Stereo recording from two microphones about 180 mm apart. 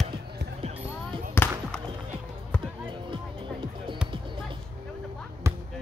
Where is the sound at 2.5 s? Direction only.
5° left (ahead or behind).